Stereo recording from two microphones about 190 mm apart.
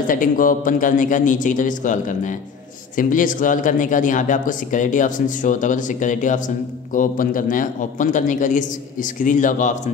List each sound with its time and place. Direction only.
0.0 s speech: 45° left (ahead or behind)